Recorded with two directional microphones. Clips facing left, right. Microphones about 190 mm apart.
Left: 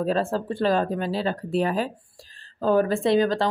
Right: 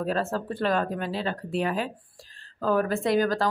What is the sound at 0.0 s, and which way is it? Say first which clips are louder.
Speech: left 4 dB; 30° left (ahead or behind).